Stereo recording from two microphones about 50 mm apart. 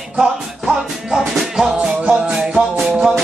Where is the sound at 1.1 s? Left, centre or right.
Centre.